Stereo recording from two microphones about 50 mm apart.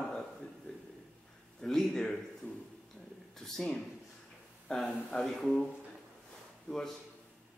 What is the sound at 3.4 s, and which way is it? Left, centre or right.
Speech, centre.